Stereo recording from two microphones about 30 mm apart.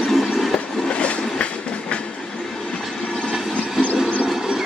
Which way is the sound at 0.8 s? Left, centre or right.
Left.